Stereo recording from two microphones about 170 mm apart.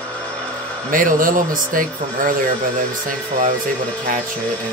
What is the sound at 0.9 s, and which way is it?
Speech, 50° right (ahead or behind).